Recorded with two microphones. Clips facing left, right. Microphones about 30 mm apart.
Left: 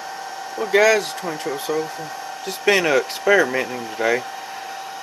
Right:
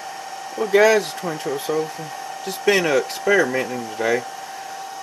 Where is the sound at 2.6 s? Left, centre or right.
Centre.